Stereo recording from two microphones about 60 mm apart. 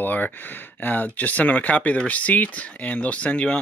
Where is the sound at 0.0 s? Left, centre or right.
Left.